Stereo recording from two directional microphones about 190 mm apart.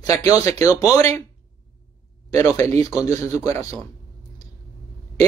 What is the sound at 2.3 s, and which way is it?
Speech, 15° left (ahead or behind).